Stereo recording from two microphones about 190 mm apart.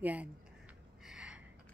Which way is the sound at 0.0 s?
10° right (ahead or behind).